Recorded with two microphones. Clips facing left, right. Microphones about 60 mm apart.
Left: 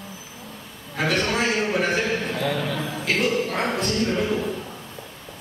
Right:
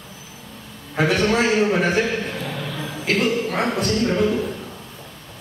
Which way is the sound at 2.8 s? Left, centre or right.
Centre.